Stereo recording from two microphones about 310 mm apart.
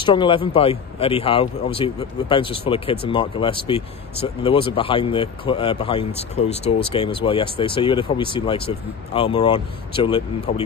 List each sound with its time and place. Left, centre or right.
0.0 s speech: centre